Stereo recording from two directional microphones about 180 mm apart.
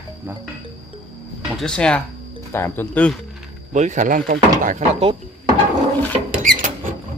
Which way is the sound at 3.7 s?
45° right (ahead or behind).